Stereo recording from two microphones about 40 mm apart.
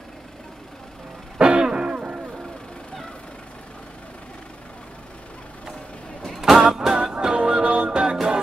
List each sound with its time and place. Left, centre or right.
1.4 s throat clearing: right
1.9 s music: right
6.5 s music: centre
7.3 s music: right